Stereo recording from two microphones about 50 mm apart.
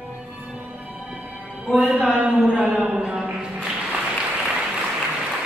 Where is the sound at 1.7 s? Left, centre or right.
Right.